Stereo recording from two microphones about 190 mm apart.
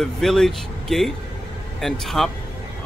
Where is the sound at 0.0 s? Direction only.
Centre (ahead or behind).